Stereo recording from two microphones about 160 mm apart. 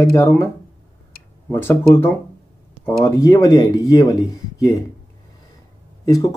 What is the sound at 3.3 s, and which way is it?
Speech, 25° left (ahead or behind).